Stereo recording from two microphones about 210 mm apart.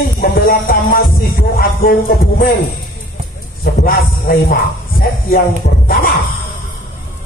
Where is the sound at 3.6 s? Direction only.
45° left (ahead or behind).